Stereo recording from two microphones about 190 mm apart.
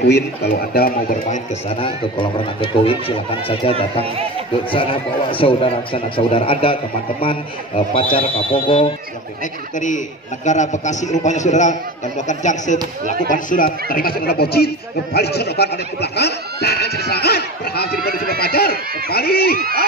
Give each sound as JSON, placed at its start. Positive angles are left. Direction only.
{"t": 0.1, "sound": "speech", "side_deg": 55}
{"t": 1.8, "sound": "a man's voice", "side_deg": 25}
{"t": 4.6, "sound": "a man's voice", "side_deg": 30}
{"t": 9.8, "sound": "a man's voice", "side_deg": 40}